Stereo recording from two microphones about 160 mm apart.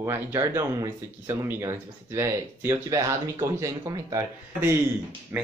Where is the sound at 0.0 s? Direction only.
15° right (ahead or behind).